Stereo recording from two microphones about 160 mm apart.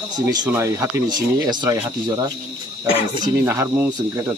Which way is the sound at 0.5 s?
20° right (ahead or behind).